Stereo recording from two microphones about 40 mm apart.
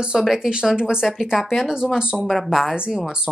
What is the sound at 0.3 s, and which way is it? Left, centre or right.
Speech, right.